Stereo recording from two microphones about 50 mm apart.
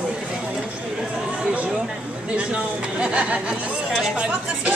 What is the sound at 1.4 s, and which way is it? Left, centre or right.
Chatter, right.